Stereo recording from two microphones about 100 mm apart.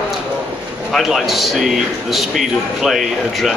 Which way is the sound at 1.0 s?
Centre (ahead or behind).